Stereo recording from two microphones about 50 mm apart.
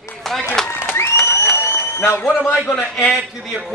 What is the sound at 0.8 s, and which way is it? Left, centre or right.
Crowd, left.